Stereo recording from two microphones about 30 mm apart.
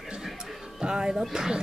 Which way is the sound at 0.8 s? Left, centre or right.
Right.